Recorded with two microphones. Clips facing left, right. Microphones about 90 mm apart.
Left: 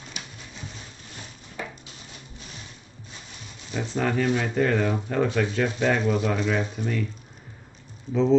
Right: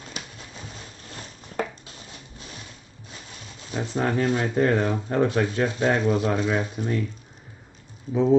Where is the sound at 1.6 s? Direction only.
55° right (ahead or behind).